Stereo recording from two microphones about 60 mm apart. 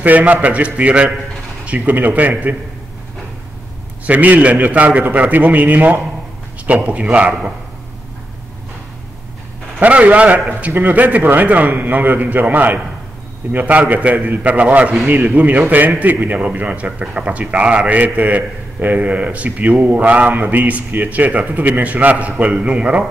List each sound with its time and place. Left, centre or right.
0.0 s a man's voice: right
4.0 s a man's voice: right
9.8 s a man's voice: right